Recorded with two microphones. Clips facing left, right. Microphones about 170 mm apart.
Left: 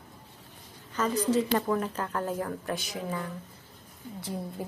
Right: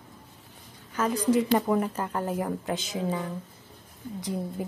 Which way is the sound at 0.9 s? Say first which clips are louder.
Right 2 dB; 10° right (ahead or behind).